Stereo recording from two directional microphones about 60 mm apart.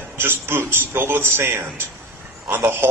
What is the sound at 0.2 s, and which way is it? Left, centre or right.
A man's voice, right.